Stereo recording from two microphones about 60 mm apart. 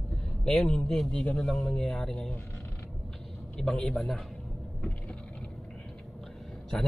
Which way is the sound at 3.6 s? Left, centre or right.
Centre.